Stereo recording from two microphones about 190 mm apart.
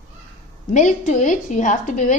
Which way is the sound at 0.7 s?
40° left (ahead or behind).